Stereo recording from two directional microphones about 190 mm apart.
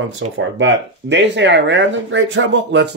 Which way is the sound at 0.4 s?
75° right (ahead or behind).